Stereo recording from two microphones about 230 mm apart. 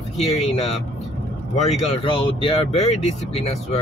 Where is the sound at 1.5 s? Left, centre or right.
Left.